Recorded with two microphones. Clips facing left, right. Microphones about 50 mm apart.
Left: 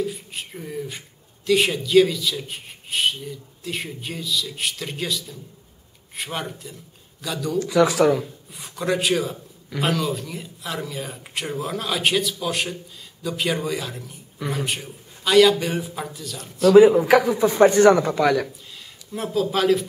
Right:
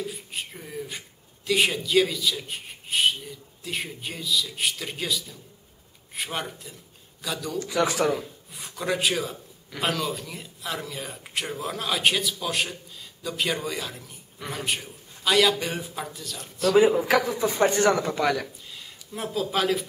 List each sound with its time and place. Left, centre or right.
0.0 s a man's voice: centre
17.0 s speech: centre
18.1 s speech: centre